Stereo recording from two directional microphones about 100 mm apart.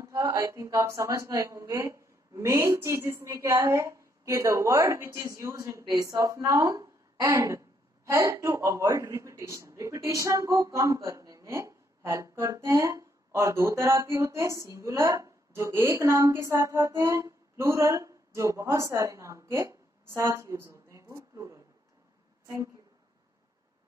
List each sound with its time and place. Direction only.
0.0 s a woman's voice: 35° right (ahead or behind)